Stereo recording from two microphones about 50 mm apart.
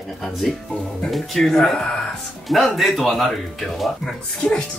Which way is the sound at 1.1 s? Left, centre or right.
Centre.